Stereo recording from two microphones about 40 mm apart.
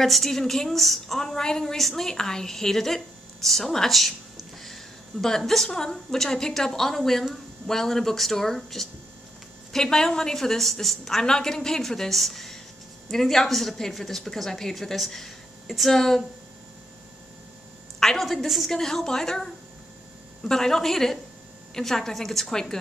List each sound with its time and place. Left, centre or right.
0.0 s a woman's voice: centre
18.0 s a woman's voice: centre